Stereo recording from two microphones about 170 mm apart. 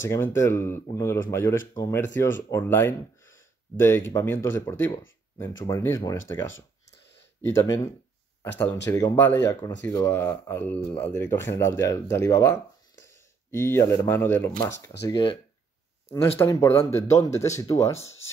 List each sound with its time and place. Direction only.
0.1 s speech: 15° left (ahead or behind)
7.4 s speech: 15° left (ahead or behind)
8.9 s speech: 15° left (ahead or behind)
15.0 s speech: 25° left (ahead or behind)
16.3 s speech: 15° left (ahead or behind)